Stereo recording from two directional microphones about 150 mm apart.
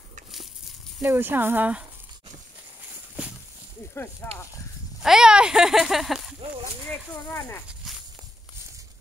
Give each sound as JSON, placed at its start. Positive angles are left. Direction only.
{"t": 1.0, "sound": "speech", "side_deg": -15}
{"t": 4.2, "sound": "speech", "side_deg": 15}
{"t": 5.0, "sound": "speech", "side_deg": -5}
{"t": 6.9, "sound": "speech", "side_deg": 15}